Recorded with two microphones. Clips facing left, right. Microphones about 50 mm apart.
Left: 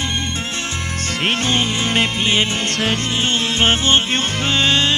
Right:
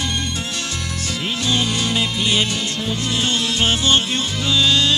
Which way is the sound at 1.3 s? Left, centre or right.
Left.